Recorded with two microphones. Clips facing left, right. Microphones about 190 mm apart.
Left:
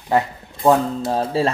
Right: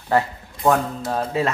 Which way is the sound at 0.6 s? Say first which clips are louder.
Left 3 dB; 30° left (ahead or behind).